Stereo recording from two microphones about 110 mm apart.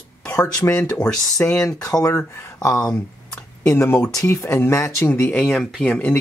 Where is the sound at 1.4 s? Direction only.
30° left (ahead or behind).